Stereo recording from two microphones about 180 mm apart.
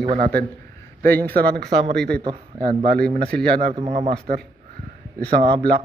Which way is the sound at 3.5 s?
35° right (ahead or behind).